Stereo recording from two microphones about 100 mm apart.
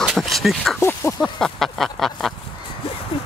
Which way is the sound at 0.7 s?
25° left (ahead or behind).